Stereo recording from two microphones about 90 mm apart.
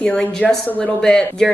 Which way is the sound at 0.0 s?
10° left (ahead or behind).